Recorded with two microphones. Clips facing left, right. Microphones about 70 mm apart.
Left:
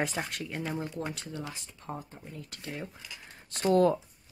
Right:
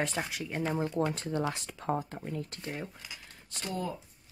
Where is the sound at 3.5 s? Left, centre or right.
Left.